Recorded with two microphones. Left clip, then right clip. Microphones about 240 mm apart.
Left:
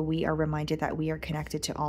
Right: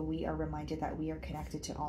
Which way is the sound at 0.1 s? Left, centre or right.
Left.